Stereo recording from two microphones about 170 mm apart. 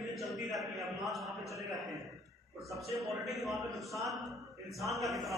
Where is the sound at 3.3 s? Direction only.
Centre (ahead or behind).